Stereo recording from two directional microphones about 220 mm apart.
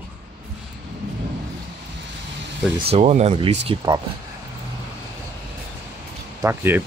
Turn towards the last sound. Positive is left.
turn(degrees=-10)  # may be behind; listen again after turning